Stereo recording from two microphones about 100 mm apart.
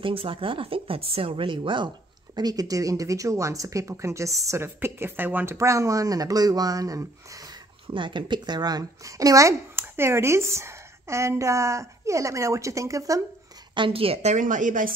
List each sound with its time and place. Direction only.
0.0 s a woman's voice: 65° right (ahead or behind)
2.3 s speech: 40° right (ahead or behind)
7.9 s speech: 55° right (ahead or behind); by 13.2 s 35° right (ahead or behind)
13.7 s a woman's voice: 65° right (ahead or behind)